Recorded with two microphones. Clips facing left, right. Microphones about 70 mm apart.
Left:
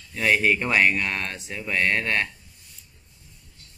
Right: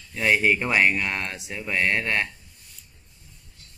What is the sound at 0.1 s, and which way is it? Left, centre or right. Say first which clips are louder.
Speech: even; centre.